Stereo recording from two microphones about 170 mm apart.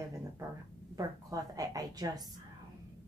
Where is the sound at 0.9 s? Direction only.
20° right (ahead or behind).